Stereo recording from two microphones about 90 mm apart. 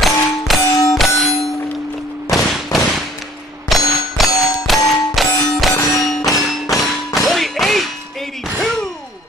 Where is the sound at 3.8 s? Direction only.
40° left (ahead or behind).